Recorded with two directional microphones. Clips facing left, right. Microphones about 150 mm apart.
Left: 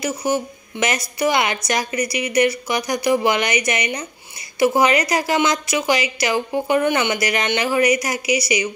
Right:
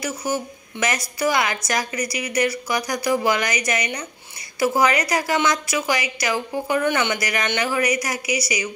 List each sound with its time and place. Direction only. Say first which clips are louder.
0.0 s a woman's voice: left 4 dB; 25° left (ahead or behind)